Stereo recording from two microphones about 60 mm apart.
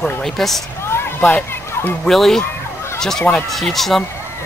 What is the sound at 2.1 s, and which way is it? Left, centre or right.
Speech, centre.